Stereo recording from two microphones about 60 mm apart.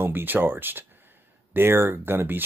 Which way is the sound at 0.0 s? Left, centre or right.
Right.